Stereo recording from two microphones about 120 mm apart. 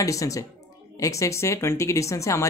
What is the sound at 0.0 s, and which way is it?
Speech, 25° left (ahead or behind).